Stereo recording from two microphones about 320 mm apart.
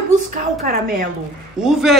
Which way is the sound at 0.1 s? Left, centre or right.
Right.